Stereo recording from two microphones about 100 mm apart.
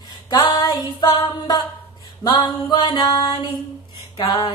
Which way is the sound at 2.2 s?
45° left (ahead or behind).